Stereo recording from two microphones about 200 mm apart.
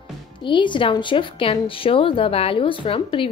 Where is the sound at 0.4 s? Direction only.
25° left (ahead or behind).